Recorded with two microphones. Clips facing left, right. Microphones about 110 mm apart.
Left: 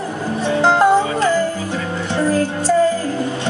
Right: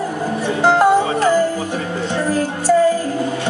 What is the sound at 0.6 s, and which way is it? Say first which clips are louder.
Music: even; 15° right (ahead or behind).